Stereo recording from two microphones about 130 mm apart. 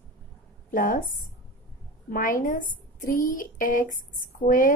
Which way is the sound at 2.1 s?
90° left.